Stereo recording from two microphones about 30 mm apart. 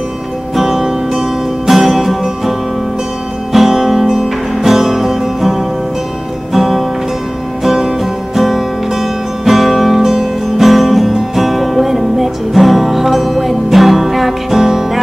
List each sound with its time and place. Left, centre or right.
0.6 s music: centre
3.5 s music: centre
8.0 s music: centre